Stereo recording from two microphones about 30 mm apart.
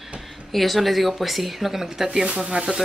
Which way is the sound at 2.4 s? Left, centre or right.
Right.